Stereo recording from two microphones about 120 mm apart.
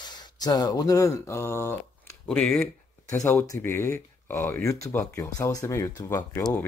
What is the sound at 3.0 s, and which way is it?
Speech, 25° left (ahead or behind).